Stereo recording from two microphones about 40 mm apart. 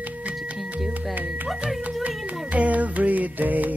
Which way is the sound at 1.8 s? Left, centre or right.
Right.